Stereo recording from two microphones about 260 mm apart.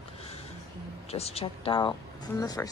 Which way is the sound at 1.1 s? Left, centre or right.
Left.